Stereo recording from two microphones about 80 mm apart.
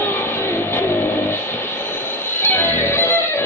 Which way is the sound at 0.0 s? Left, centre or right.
Left.